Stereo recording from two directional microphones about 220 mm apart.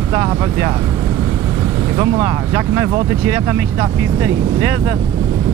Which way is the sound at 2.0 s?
15° right (ahead or behind).